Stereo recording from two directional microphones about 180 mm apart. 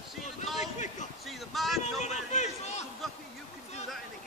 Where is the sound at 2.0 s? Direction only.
40° left (ahead or behind).